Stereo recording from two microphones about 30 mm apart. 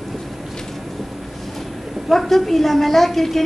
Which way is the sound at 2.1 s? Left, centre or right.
Centre.